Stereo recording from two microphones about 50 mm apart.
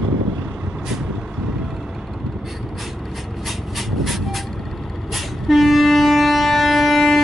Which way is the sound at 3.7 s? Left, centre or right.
Centre.